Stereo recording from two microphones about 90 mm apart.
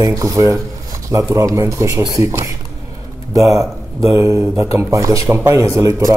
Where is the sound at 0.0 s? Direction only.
40° right (ahead or behind).